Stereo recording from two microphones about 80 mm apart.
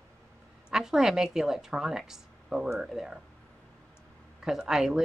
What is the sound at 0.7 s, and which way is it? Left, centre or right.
Speech, centre.